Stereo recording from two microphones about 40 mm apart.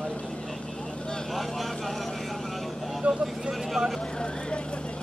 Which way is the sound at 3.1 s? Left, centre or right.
Centre.